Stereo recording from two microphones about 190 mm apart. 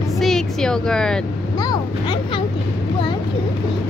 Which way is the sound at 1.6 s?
25° left (ahead or behind).